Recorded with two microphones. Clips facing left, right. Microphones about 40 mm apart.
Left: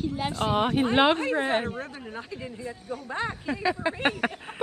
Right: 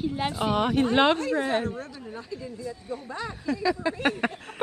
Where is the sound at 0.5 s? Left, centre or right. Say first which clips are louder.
Even; centre.